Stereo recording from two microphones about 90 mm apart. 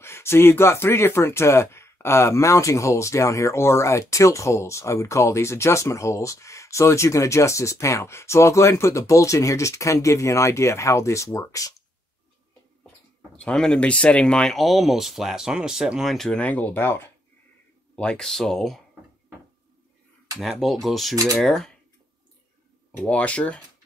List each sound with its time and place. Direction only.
0.0 s speech: 30° left (ahead or behind)
13.4 s speech: 10° left (ahead or behind)
16.3 s speech: 15° left (ahead or behind)
17.9 s speech: 10° left (ahead or behind)
20.3 s speech: centre (ahead or behind)
23.0 s speech: 15° left (ahead or behind)